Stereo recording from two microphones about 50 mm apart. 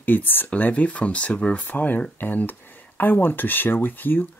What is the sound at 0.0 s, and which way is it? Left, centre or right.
Speech, left.